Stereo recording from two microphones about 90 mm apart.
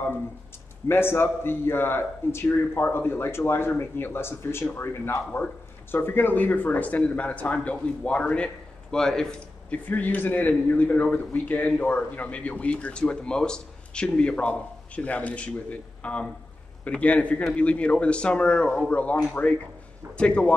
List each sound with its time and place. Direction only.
0.8 s a man's voice: 25° left (ahead or behind); by 9.8 s 5° left (ahead or behind)
9.8 s speech: 20° left (ahead or behind)